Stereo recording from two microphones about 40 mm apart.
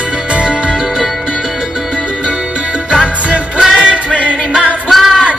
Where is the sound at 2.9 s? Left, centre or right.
Right.